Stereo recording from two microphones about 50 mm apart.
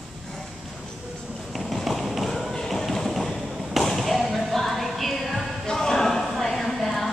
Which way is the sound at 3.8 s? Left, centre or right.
Centre.